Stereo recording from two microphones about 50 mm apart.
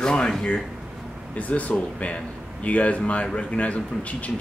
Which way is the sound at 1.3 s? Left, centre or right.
Left.